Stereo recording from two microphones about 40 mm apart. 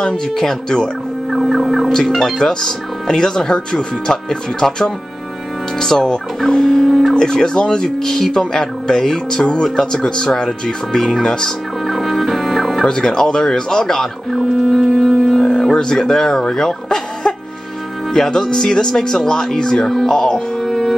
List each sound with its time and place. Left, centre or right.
0.0 s speech: centre
1.3 s a sound: centre
1.9 s speech: centre
6.8 s speech: centre
7.2 s speech: centre
11.8 s music: centre
12.8 s speech: centre
14.3 s music: centre
15.7 s speech: centre
20.6 s music: centre